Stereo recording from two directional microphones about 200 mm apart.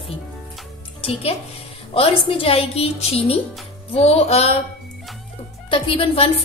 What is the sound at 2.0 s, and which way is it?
A woman's voice, 25° left (ahead or behind).